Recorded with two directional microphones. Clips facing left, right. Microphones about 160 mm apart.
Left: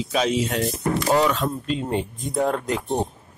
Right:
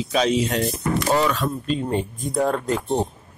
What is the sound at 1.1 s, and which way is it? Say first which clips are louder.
Speech: left 2 dB; 20° left (ahead or behind).